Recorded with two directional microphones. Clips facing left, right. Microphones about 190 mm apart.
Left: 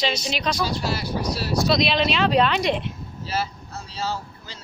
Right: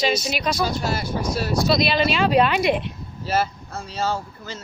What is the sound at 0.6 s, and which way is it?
Speech, 50° right (ahead or behind).